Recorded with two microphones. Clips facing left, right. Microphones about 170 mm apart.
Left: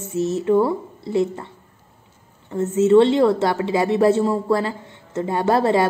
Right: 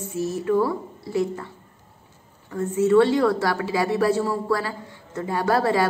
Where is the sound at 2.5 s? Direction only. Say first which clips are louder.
Left 4 dB; 25° left (ahead or behind).